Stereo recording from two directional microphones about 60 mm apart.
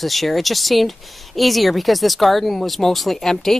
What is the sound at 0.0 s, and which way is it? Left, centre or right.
Speech, centre.